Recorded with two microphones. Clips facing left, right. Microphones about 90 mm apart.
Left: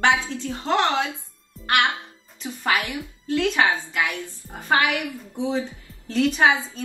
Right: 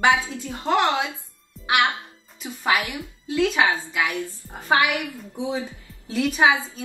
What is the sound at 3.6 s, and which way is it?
Speech, 20° right (ahead or behind).